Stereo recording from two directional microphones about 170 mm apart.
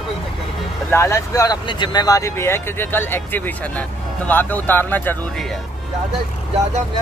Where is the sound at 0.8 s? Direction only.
15° left (ahead or behind).